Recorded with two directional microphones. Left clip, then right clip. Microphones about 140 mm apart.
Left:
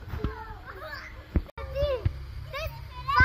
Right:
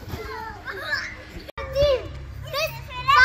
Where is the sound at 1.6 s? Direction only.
Centre (ahead or behind).